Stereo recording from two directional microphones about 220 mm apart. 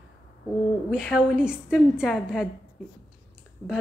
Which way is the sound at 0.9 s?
Centre (ahead or behind).